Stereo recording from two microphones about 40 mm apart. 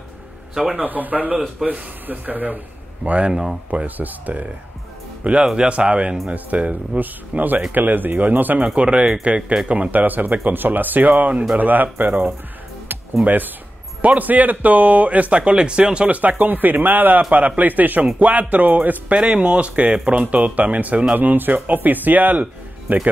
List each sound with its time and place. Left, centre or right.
0.8 s speech: right
1.6 s speech: centre
2.0 s speech: right
3.1 s speech: right
3.8 s speech: right
5.4 s speech: centre
6.3 s speech: right
8.5 s speech: right
9.7 s speech: right
13.2 s speech: right
16.2 s speech: right
19.2 s speech: right